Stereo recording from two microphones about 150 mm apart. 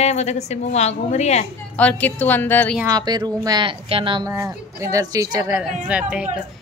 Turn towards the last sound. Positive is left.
turn(degrees=-5)  # may be behind; listen again after turning